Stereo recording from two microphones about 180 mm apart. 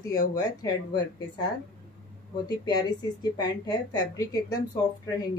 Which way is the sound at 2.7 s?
20° left (ahead or behind).